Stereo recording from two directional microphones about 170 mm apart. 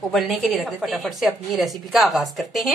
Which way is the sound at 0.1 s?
Centre (ahead or behind).